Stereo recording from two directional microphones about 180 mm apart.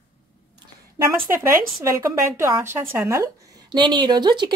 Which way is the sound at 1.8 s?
15° right (ahead or behind).